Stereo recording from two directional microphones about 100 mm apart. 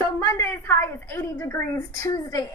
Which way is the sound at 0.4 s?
25° left (ahead or behind).